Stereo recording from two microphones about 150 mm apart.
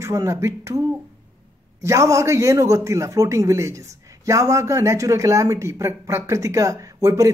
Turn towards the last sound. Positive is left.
turn(degrees=-20)  # may be behind; listen again after turning